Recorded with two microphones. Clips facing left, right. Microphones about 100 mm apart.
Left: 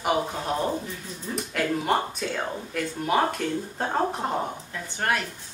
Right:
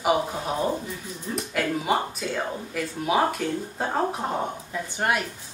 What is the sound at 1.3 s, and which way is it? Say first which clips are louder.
Speech: even; centre (ahead or behind).